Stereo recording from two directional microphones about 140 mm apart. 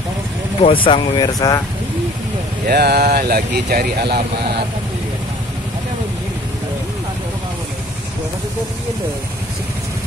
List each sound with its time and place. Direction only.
0.6 s speech: 40° left (ahead or behind)
2.6 s speech: 90° right